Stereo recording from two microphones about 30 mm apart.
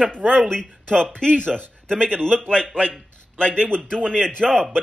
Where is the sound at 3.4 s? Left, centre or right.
Left.